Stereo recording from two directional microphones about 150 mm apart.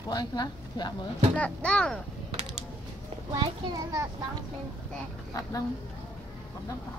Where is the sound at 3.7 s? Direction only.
25° right (ahead or behind).